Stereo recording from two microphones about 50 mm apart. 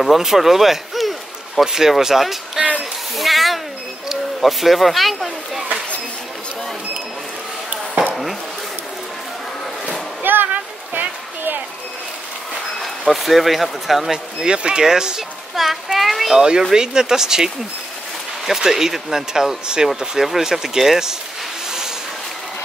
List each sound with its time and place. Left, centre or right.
0.0 s speech: centre
3.2 s cat: centre
4.1 s owl: centre
7.7 s chop: right
10.2 s a sound: right
13.0 s speech: centre
14.4 s a child's voice: centre
16.3 s speech: centre
18.5 s speech: centre